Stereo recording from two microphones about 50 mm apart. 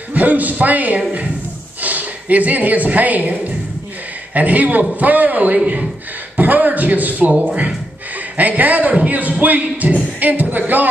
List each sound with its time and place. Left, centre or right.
0.1 s a man's voice: right
8.4 s speech: right